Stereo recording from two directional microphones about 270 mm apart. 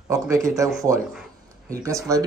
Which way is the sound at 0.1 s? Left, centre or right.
Centre.